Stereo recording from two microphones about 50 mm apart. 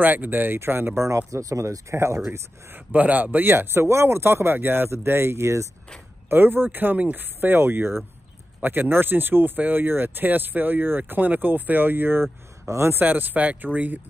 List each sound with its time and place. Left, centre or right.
0.0 s speech: right
1.0 s speech: right
2.7 s speech: right
6.2 s speech: right
7.3 s speech: right
12.6 s speech: right
13.0 s speech: right